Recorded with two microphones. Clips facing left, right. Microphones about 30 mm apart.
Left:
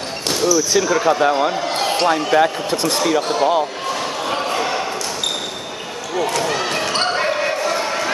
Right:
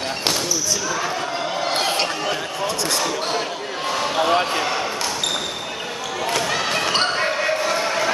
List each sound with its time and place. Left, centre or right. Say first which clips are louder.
0.7 s speech: left 8 dB; left
1.7 s a sound: left 2 dB; centre
2.3 s speech: left 8 dB; left
4.3 s basketball bounce: right 1 dB; centre
6.2 s basketball bounce: left 1 dB; centre